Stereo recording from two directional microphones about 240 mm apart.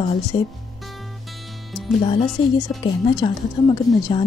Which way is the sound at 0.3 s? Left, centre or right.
Left.